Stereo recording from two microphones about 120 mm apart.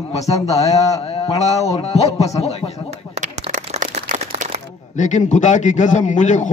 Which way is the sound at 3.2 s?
90° right.